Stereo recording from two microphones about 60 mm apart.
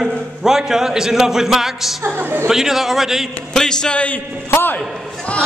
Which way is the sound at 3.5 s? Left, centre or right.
Centre.